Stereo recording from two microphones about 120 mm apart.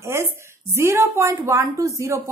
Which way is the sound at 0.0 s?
20° right (ahead or behind).